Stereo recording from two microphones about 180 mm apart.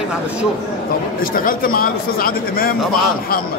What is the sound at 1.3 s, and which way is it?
Speech, 50° left (ahead or behind).